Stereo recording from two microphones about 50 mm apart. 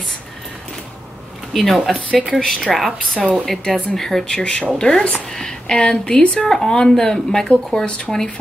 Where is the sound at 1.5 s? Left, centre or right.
Centre.